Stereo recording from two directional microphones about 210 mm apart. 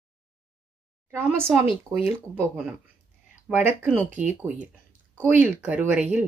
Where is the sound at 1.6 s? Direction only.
25° left (ahead or behind).